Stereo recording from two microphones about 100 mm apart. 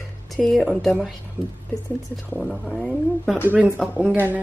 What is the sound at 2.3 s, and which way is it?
Speech, centre (ahead or behind).